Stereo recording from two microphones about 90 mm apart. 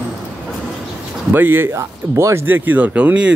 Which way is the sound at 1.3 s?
25° right (ahead or behind).